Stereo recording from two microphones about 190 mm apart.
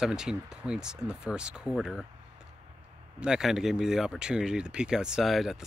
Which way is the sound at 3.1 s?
5° right (ahead or behind).